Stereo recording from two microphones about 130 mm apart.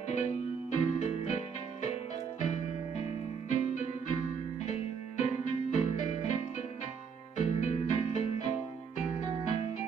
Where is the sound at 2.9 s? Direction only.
60° left (ahead or behind).